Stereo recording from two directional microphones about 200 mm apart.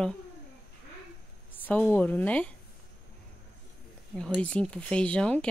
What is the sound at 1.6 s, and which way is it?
Speech, 10° left (ahead or behind).